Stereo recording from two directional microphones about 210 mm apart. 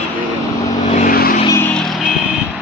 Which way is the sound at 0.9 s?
40° left (ahead or behind).